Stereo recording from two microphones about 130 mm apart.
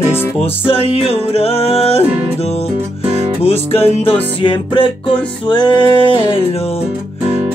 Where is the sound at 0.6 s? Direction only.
45° left (ahead or behind).